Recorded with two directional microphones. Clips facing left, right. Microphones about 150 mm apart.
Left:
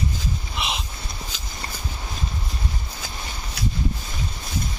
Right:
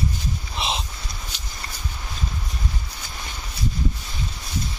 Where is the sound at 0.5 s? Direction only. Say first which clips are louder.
Right 3 dB; 30° right (ahead or behind).